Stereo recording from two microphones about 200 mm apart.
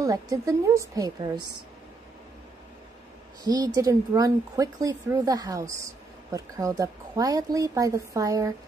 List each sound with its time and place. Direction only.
0.0 s speech: 15° right (ahead or behind)
3.4 s speech: 20° right (ahead or behind)